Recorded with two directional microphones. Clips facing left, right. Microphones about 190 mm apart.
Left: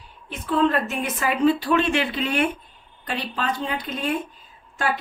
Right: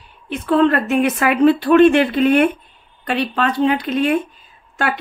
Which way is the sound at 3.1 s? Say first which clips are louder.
Right 8 dB; 70° right (ahead or behind).